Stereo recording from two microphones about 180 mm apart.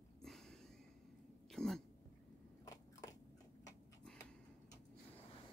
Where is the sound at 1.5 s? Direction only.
5° left (ahead or behind).